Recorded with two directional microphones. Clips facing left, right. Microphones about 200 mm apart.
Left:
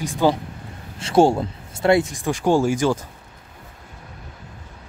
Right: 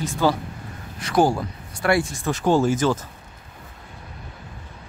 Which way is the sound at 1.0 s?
25° left (ahead or behind).